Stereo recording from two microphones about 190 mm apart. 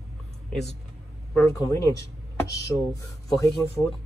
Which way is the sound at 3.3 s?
20° left (ahead or behind).